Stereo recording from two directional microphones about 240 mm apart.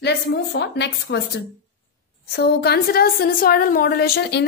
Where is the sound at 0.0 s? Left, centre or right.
Left.